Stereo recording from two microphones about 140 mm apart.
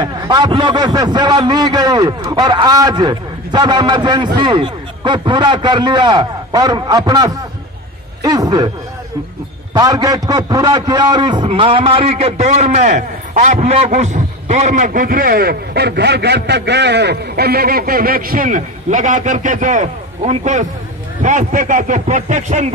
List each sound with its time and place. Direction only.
0.0 s a man's voice: 30° right (ahead or behind)
9.8 s a man's voice: 25° right (ahead or behind); by 15.5 s 90° right
17.4 s a man's voice: 90° right; by 22.7 s 60° right (ahead or behind)